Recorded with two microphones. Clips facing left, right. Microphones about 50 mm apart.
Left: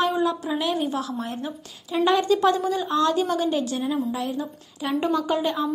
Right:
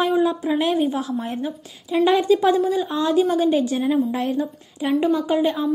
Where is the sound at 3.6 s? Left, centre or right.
Right.